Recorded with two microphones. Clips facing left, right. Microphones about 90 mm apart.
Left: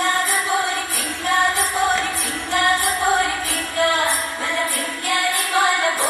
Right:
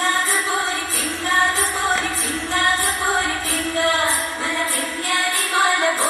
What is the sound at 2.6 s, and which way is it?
Music, 20° left (ahead or behind).